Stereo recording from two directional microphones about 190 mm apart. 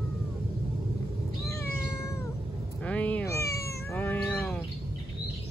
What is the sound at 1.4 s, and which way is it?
Cat, 15° left (ahead or behind).